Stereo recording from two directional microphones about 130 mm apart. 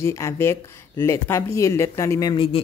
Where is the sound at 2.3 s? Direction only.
45° left (ahead or behind).